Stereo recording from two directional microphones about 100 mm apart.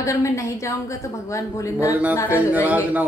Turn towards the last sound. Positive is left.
turn(degrees=-15)  # may be behind; listen again after turning